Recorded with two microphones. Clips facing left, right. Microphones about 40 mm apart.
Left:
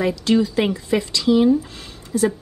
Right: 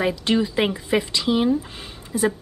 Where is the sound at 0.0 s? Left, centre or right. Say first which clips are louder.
Left 3 dB; right.